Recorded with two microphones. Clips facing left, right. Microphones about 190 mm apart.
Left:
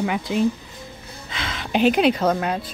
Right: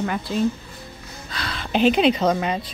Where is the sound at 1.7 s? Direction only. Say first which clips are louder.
Even; 10° left (ahead or behind).